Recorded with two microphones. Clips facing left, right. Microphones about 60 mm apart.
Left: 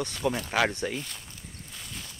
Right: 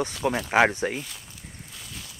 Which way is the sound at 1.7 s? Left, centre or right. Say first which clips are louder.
Left 1 dB; centre.